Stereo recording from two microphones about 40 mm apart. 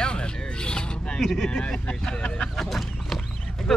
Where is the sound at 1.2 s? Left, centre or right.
Centre.